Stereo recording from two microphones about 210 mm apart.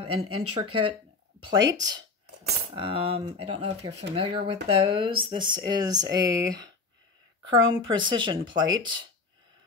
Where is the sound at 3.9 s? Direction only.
90° right.